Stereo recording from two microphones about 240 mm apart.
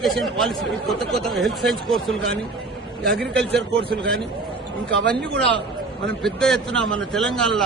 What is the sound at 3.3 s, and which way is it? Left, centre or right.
Speech, centre.